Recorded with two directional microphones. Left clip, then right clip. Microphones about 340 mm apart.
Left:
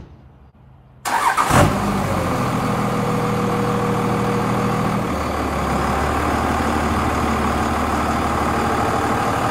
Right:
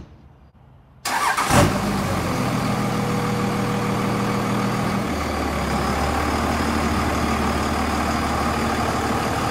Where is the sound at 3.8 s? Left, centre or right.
Centre.